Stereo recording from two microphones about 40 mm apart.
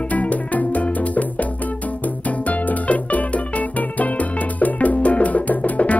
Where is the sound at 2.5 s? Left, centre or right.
Left.